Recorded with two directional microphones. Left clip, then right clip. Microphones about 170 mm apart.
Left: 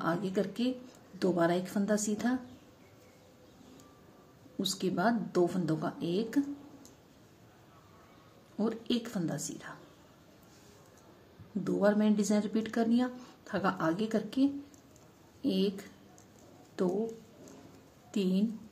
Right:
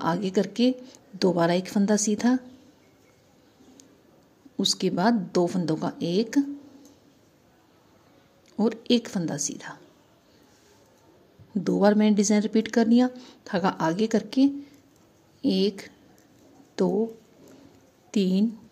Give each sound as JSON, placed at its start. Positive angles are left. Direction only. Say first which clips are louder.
{"t": 0.0, "sound": "speech", "louder": "right 7 dB", "side_deg": -45}
{"t": 4.6, "sound": "speech", "louder": "right 8 dB", "side_deg": -40}
{"t": 8.5, "sound": "speech", "louder": "right 9 dB", "side_deg": -40}
{"t": 11.6, "sound": "speech", "louder": "right 7 dB", "side_deg": -40}
{"t": 18.1, "sound": "a woman's voice", "louder": "right 7 dB", "side_deg": -40}